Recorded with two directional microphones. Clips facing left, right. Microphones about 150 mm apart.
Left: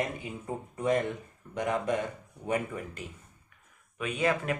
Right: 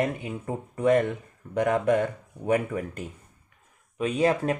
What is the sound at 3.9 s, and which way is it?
Speech, 35° right (ahead or behind).